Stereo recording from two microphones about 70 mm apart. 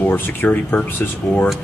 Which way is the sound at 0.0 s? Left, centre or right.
Left.